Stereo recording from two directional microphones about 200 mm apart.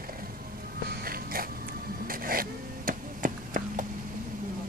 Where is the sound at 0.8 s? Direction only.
45° right (ahead or behind).